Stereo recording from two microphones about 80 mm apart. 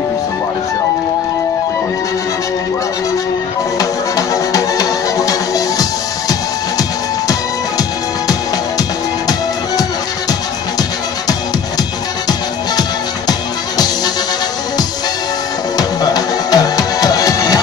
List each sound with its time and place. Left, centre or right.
4.3 s music: left
13.3 s music: left
15.8 s music: left